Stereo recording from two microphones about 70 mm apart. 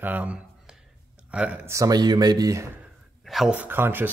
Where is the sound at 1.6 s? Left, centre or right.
Right.